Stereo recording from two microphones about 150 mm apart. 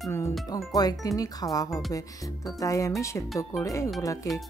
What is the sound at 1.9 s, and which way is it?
Speech, 20° left (ahead or behind).